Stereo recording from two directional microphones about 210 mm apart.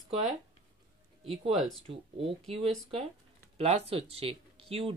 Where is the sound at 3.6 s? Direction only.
30° right (ahead or behind).